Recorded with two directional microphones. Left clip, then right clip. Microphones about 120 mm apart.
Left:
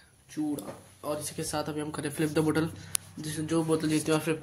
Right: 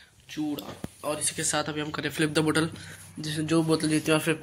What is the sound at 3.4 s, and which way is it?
Speech, 40° right (ahead or behind).